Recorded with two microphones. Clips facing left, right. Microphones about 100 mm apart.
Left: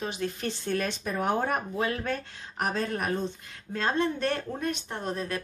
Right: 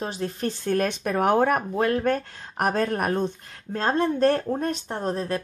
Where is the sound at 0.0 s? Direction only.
35° right (ahead or behind); by 3.3 s 55° right (ahead or behind).